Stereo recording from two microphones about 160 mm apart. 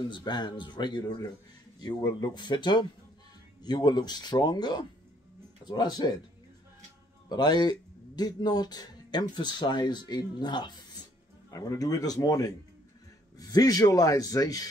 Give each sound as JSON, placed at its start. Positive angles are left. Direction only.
{"t": 0.1, "sound": "speech", "side_deg": 25}
{"t": 7.2, "sound": "speech", "side_deg": 25}